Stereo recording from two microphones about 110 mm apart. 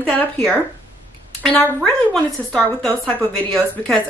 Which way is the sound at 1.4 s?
15° left (ahead or behind).